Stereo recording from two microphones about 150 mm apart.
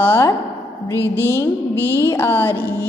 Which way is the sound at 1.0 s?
20° right (ahead or behind).